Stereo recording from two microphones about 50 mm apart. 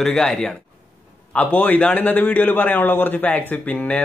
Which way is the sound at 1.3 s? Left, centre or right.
Left.